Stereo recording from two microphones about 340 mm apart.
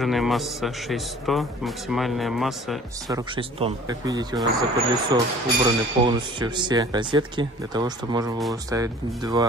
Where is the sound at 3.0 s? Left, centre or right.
Centre.